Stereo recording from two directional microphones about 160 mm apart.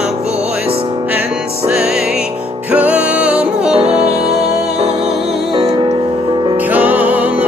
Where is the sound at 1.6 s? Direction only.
5° right (ahead or behind).